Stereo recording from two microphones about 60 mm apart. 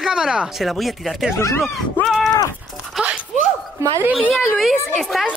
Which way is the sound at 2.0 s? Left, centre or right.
Centre.